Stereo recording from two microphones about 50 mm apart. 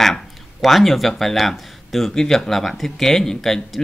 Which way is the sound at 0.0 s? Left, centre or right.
Centre.